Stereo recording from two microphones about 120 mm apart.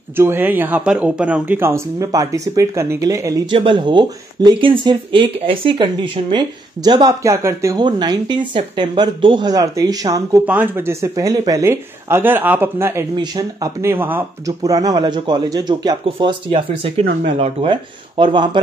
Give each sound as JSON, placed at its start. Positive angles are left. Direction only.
{"t": 0.2, "sound": "speech", "side_deg": -15}
{"t": 1.7, "sound": "speech", "side_deg": -25}
{"t": 3.4, "sound": "speech", "side_deg": -40}
{"t": 7.8, "sound": "speech", "side_deg": -40}
{"t": 10.4, "sound": "speech", "side_deg": -15}
{"t": 13.1, "sound": "speech", "side_deg": -35}
{"t": 14.4, "sound": "speech", "side_deg": -30}